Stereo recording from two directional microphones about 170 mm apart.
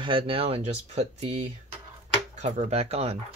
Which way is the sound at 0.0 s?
30° right (ahead or behind).